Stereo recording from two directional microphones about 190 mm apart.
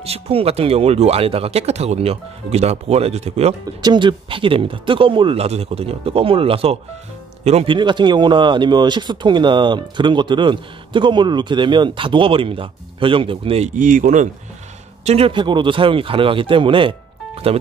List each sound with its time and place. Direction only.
0.0 s speech: 30° right (ahead or behind)
3.8 s speech: 25° right (ahead or behind)
13.7 s speech: 45° right (ahead or behind)
15.0 s speech: 30° right (ahead or behind)